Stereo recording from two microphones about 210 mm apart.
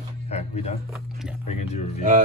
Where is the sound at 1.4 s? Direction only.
30° left (ahead or behind).